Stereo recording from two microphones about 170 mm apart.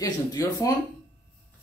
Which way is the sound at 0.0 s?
20° left (ahead or behind).